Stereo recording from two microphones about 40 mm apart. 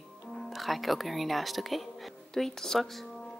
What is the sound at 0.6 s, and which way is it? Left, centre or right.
Speech, centre.